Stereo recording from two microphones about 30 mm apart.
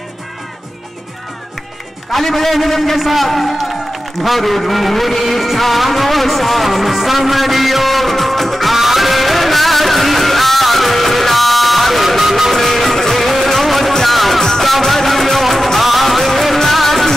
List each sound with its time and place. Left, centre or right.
2.1 s a man's voice: centre
5.4 s music: centre
8.7 s music: centre
12.2 s music: centre
12.5 s music: centre